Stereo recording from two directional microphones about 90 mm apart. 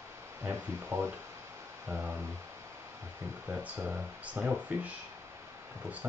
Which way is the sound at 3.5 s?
20° right (ahead or behind).